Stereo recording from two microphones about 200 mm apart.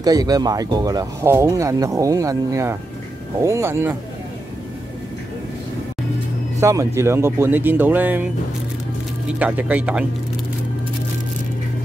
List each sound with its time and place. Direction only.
0.0 s speech: 20° right (ahead or behind)
6.6 s speech: 15° right (ahead or behind)
9.4 s speech: 10° right (ahead or behind)